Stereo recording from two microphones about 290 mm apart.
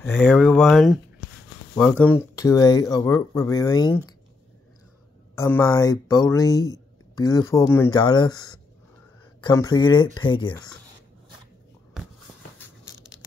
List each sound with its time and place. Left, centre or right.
0.0 s speech: centre
5.3 s speech: centre